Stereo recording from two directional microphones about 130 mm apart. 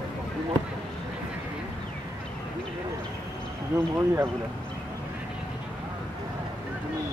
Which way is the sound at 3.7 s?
20° right (ahead or behind).